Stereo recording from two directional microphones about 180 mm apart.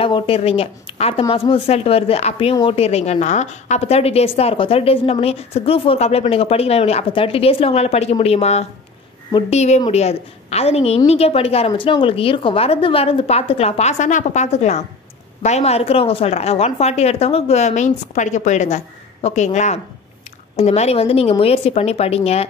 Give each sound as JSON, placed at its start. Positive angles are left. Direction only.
{"t": 0.0, "sound": "a woman's voice", "side_deg": 30}